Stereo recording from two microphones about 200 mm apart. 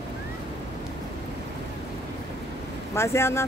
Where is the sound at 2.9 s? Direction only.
15° left (ahead or behind).